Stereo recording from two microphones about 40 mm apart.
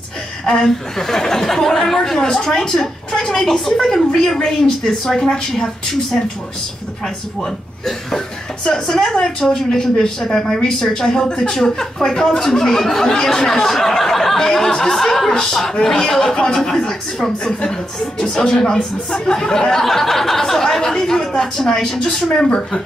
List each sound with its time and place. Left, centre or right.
0.5 s speech: centre
8.6 s speech: centre
18.2 s speech: centre